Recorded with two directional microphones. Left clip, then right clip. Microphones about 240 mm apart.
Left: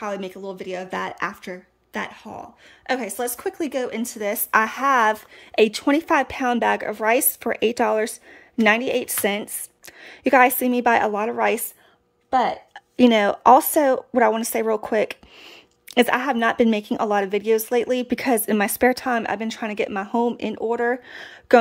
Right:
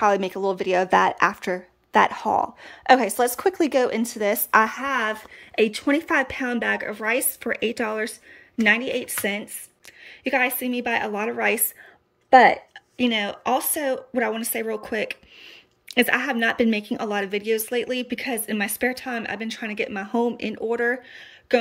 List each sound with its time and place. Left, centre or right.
0.0 s a woman's voice: centre
12.7 s speech: centre
21.1 s speech: centre